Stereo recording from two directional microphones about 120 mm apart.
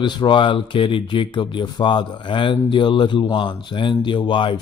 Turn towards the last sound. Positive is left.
turn(degrees=45)  # may be behind; listen again after turning